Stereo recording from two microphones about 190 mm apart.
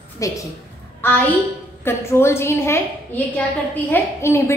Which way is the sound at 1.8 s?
15° left (ahead or behind).